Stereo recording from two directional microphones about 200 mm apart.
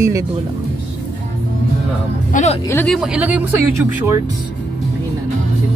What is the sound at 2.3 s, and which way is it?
Speech, 35° left (ahead or behind).